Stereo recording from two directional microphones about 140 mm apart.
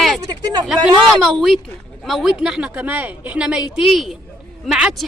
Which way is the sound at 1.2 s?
Centre (ahead or behind).